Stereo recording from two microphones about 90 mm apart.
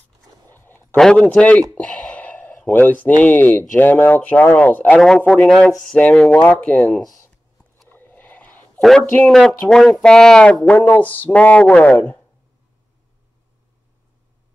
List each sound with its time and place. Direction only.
0.6 s a sound: 25° left (ahead or behind)
0.9 s speech: 10° left (ahead or behind)
4.9 s speech: 5° left (ahead or behind)
7.9 s a sound: 20° left (ahead or behind)
9.0 s speech: 20° left (ahead or behind)
9.7 s speech: 5° left (ahead or behind)